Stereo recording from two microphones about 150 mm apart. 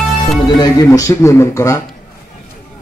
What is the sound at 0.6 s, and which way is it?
Speech, 25° left (ahead or behind).